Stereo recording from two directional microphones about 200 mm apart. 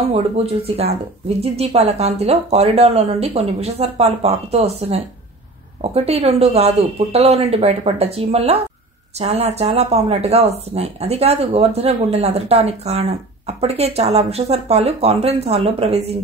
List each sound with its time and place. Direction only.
1.4 s speech: 30° right (ahead or behind)